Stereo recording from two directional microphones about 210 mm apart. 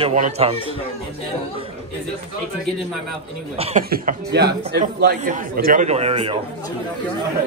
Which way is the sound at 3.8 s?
45° right (ahead or behind).